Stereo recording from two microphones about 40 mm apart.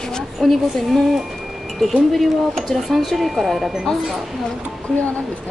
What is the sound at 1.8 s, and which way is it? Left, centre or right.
Speech, centre.